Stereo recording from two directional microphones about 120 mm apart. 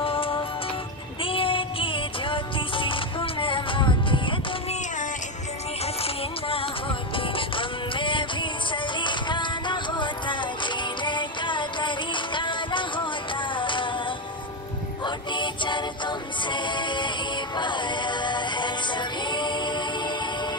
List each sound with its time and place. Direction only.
0.0 s music: 50° left (ahead or behind)
6.0 s music: 50° left (ahead or behind)